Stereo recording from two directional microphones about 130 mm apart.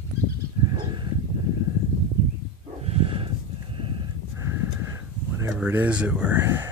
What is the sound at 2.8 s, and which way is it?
Snort, 50° right (ahead or behind).